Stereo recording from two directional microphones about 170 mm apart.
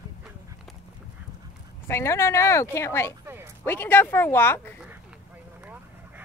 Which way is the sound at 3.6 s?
10° left (ahead or behind).